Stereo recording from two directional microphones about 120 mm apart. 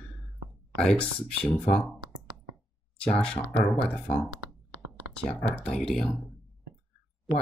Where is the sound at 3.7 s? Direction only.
10° left (ahead or behind).